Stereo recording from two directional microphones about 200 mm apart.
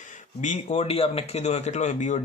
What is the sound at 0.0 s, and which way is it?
Speech, 40° left (ahead or behind).